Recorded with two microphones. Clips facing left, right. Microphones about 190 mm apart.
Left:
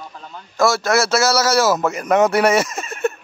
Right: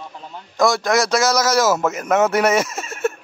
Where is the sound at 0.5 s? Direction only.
15° right (ahead or behind).